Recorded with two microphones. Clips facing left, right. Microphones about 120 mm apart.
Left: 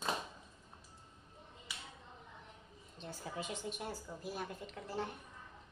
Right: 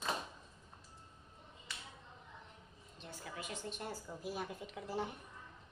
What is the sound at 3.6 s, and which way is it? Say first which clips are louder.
A woman's voice: left 1 dB; 5° left (ahead or behind).